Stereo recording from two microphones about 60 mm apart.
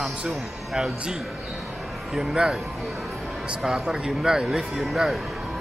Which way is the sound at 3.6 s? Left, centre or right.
Centre.